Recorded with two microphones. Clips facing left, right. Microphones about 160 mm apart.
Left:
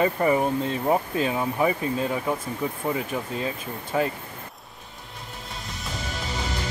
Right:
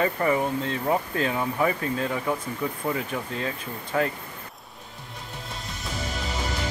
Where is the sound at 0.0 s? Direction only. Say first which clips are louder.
Left 2 dB; 20° left (ahead or behind).